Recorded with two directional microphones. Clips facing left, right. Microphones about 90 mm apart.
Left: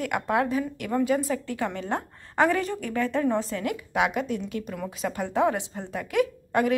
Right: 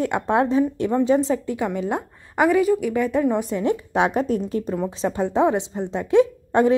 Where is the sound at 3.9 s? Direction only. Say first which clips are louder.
Right 3 dB; 35° right (ahead or behind).